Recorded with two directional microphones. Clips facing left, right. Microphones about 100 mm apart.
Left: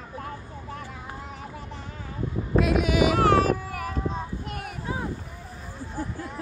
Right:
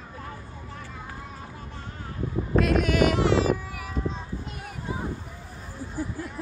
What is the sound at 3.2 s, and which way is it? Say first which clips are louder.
Child singing: left 2 dB; 50° left (ahead or behind).